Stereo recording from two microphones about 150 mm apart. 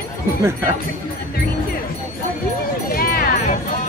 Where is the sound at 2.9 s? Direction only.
75° left (ahead or behind).